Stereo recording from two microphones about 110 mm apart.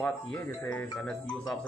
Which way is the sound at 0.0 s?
10° left (ahead or behind).